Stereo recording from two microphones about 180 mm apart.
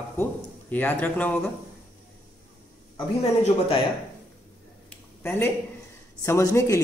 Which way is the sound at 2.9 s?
30° left (ahead or behind).